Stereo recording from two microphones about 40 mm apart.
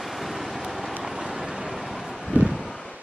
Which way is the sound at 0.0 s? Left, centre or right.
Centre.